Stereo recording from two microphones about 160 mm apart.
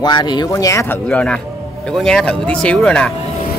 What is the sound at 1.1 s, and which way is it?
A man's voice, 5° left (ahead or behind).